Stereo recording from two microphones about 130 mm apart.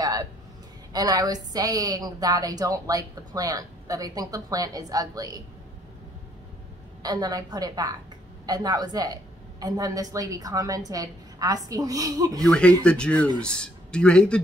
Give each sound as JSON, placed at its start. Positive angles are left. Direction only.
{"t": 0.0, "sound": "a sound", "side_deg": -30}
{"t": 0.9, "sound": "a woman's voice", "side_deg": -30}
{"t": 7.0, "sound": "a woman's voice", "side_deg": -30}
{"t": 12.4, "sound": "speech", "side_deg": 10}